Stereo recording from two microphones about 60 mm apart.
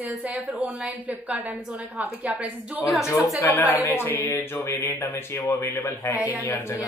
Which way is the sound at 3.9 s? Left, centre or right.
Left.